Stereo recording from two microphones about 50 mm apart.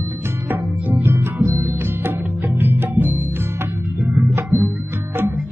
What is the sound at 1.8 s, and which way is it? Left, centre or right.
Music, right.